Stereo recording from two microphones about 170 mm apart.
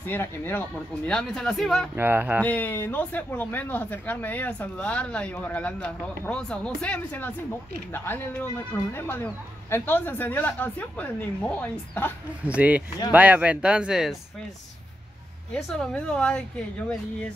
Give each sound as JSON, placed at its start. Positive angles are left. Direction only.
{"t": 0.0, "sound": "speech", "side_deg": 10}
{"t": 2.0, "sound": "speech", "side_deg": -10}
{"t": 2.4, "sound": "speech", "side_deg": 10}
{"t": 12.4, "sound": "speech", "side_deg": -10}
{"t": 15.5, "sound": "speech", "side_deg": 5}